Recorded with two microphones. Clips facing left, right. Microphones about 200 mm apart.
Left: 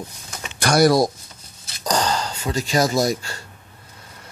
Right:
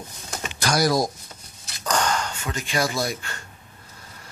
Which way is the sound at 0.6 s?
60° left (ahead or behind).